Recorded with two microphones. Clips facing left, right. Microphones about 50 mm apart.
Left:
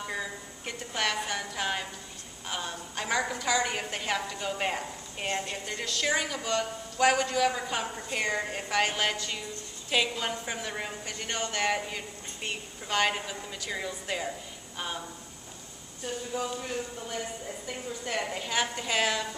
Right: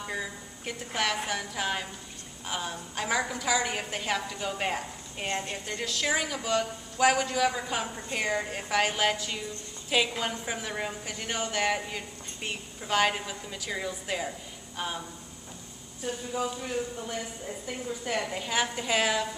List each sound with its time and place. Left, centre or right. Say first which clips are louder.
0.0 s a woman's voice: even; centre